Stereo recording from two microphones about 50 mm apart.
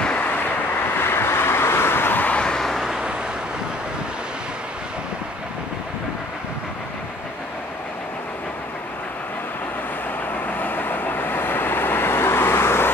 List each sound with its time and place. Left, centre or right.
0.0 s vehicle: left
0.9 s vehicle: left
2.2 s vehicle: left
2.5 s vehicle: centre
10.4 s vehicle: left